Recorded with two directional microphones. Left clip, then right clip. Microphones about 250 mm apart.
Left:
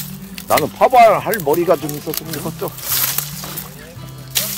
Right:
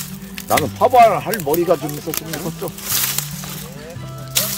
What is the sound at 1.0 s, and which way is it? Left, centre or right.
Speech, centre.